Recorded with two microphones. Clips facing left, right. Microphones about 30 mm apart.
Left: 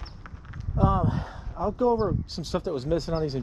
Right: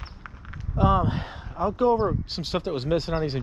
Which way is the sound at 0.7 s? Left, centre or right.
Right.